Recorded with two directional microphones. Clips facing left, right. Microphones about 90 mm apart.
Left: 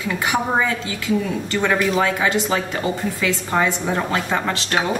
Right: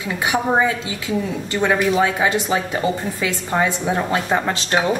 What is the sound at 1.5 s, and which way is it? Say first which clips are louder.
A woman's voice: right 2 dB; 20° right (ahead or behind).